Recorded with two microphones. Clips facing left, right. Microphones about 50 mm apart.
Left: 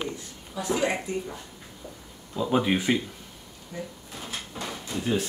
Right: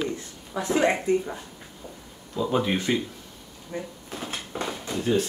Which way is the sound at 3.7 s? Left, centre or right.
Right.